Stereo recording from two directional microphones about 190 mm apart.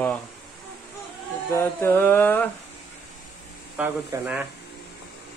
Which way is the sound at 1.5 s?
10° left (ahead or behind).